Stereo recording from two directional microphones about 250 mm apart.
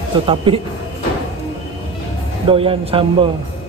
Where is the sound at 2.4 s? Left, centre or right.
Right.